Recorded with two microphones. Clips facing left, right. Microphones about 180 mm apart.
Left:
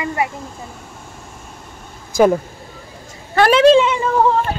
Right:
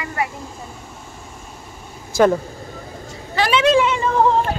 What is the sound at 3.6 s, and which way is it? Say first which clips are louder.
Speech: left 4 dB; 25° left (ahead or behind).